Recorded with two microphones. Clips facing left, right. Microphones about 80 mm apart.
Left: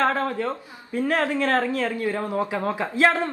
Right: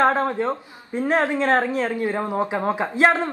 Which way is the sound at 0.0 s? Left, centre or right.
Right.